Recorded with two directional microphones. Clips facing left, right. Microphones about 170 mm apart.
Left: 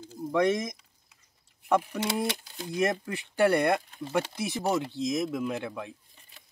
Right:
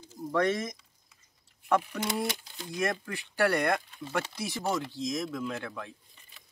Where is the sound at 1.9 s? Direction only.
25° left (ahead or behind).